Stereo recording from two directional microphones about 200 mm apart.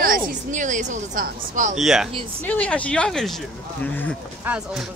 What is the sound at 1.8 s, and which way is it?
Speech, centre (ahead or behind).